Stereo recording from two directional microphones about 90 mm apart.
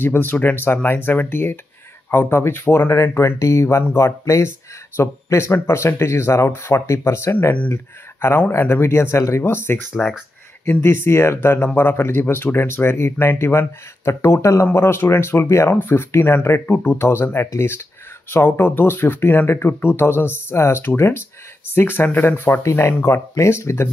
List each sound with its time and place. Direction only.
0.0 s speech: 25° left (ahead or behind)
10.0 s speech: 10° left (ahead or behind)
10.6 s speech: 30° left (ahead or behind)